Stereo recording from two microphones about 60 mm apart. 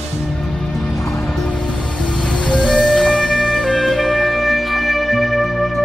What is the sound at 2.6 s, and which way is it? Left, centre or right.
Music, centre.